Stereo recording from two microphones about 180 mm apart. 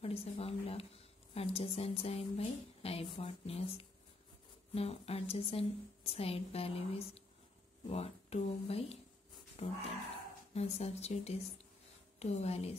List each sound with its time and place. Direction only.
0.0 s speech: 35° left (ahead or behind)